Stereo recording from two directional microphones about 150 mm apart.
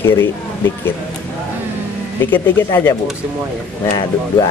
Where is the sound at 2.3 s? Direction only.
15° left (ahead or behind).